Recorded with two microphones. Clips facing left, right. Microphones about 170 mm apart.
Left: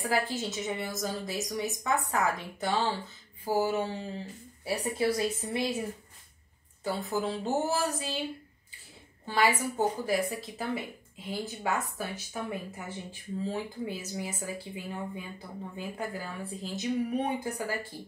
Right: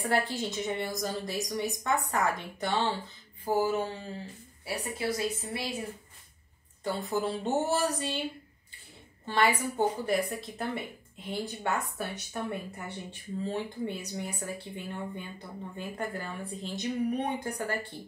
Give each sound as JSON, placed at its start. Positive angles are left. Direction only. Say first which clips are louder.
{"t": 0.0, "sound": "a woman's voice", "louder": "right 1 dB", "side_deg": 5}
{"t": 3.4, "sound": "a sound", "louder": "even", "side_deg": 10}
{"t": 4.6, "sound": "a woman's voice", "louder": "left 4 dB", "side_deg": 25}
{"t": 6.8, "sound": "a woman's voice", "louder": "even", "side_deg": 0}
{"t": 9.2, "sound": "a woman's voice", "louder": "even", "side_deg": 0}